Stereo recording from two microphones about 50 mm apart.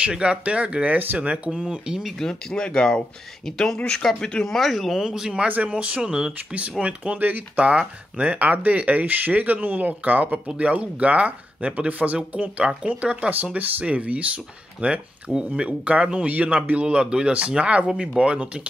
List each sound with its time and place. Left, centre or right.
0.1 s speech: right
0.9 s speech: right
1.5 s speech: centre
2.0 s speech: centre
4.5 s speech: centre
5.0 s speech: centre
7.1 s speech: right